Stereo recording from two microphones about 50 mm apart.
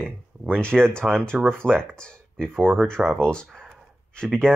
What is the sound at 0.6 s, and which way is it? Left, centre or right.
Speech, centre.